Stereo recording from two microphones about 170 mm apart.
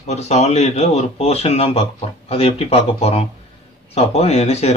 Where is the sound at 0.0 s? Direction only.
40° left (ahead or behind).